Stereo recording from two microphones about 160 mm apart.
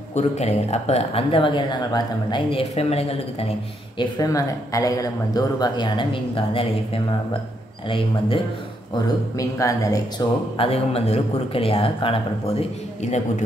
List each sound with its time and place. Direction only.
0.1 s speech: 45° left (ahead or behind); by 2.6 s 25° left (ahead or behind)
2.7 s speech: 40° left (ahead or behind)
4.0 s speech: 20° left (ahead or behind)
8.9 s speech: 20° left (ahead or behind)
10.6 s speech: 40° left (ahead or behind)